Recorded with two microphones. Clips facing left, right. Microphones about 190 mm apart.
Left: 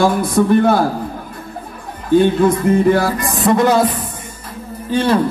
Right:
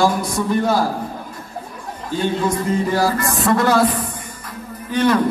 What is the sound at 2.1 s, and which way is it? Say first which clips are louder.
Speech: left 8 dB; 60° left (ahead or behind).